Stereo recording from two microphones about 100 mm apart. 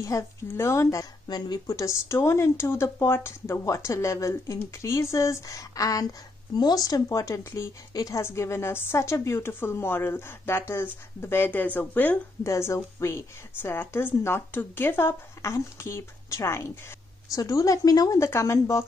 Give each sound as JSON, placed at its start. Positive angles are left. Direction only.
{"t": 0.0, "sound": "a woman's voice", "side_deg": 30}
{"t": 8.2, "sound": "a woman's voice", "side_deg": 25}
{"t": 12.4, "sound": "a woman's voice", "side_deg": 30}